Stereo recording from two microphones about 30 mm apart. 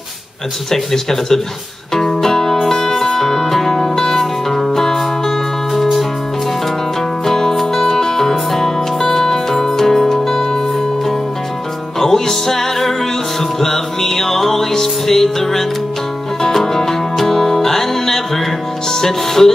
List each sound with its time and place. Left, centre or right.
0.7 s speech: centre
2.0 s music: centre
7.2 s music: centre
12.0 s music: centre
18.9 s speech: centre